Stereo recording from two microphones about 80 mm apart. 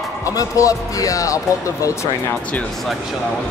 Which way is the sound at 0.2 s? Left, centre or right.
Left.